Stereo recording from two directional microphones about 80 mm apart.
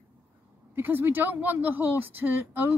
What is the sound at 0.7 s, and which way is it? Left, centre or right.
Speech, right.